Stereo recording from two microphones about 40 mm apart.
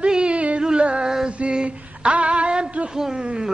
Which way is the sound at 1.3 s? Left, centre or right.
Right.